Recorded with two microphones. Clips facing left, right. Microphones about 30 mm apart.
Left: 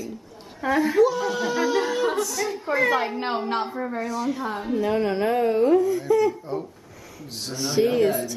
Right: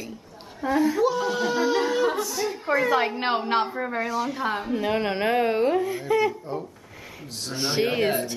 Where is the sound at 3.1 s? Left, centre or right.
Right.